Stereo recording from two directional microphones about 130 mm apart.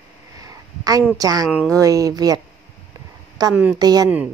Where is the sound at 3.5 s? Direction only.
10° right (ahead or behind).